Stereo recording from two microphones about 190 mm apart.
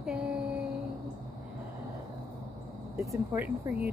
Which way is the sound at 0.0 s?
5° right (ahead or behind).